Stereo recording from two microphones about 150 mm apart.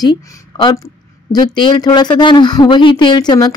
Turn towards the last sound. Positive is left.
turn(degrees=25)  # may be behind; listen again after turning